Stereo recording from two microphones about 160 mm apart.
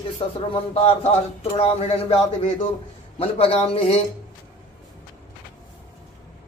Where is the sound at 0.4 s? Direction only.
35° left (ahead or behind).